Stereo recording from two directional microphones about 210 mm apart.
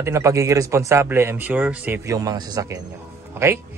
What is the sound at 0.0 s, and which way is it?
Speech, 15° right (ahead or behind).